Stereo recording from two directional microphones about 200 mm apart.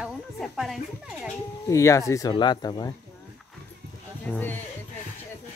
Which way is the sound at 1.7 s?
15° left (ahead or behind).